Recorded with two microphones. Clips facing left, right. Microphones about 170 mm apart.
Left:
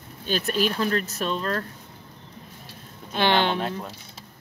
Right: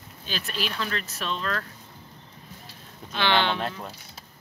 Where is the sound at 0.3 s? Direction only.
45° left (ahead or behind).